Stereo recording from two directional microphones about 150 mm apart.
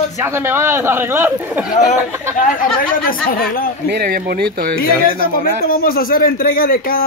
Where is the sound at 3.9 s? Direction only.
80° right.